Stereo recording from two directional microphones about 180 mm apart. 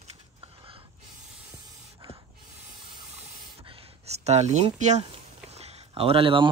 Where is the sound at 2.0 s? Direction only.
30° right (ahead or behind).